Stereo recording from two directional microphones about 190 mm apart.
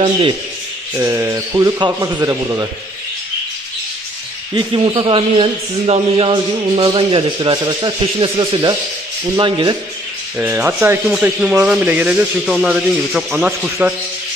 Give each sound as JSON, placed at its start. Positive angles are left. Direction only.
{"t": 0.0, "sound": "a man's voice", "side_deg": -25}
{"t": 0.9, "sound": "speech", "side_deg": -15}
{"t": 4.6, "sound": "a man's voice", "side_deg": -25}
{"t": 10.3, "sound": "speech", "side_deg": -10}